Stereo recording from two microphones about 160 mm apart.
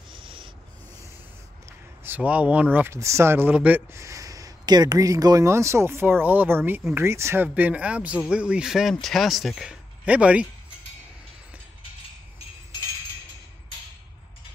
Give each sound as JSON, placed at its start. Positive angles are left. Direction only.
{"t": 0.1, "sound": "rub", "side_deg": -30}
{"t": 1.7, "sound": "speech", "side_deg": -10}